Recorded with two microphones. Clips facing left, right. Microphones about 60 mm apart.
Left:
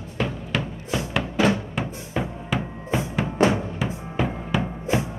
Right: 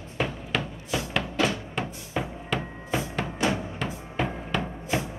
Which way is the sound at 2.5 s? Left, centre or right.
Centre.